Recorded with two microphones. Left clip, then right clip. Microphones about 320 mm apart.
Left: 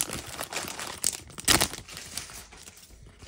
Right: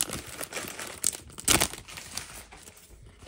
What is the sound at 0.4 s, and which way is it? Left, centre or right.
Crumpling, left.